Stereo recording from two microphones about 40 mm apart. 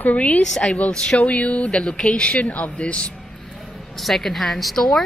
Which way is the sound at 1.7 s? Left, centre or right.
Centre.